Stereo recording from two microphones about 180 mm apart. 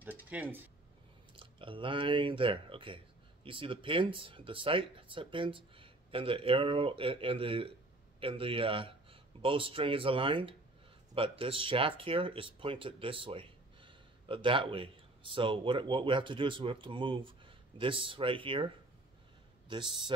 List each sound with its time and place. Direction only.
0.0 s a sound: 10° right (ahead or behind)
1.3 s speech: 30° right (ahead or behind)
19.7 s speech: 25° right (ahead or behind)